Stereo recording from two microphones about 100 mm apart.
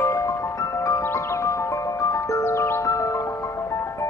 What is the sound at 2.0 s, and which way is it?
Glockenspiel, 30° left (ahead or behind).